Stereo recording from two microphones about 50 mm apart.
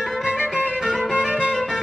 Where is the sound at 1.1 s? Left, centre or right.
Right.